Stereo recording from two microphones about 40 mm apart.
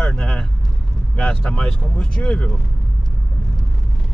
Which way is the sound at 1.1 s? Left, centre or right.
Left.